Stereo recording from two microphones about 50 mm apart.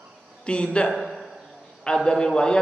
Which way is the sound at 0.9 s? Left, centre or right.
Centre.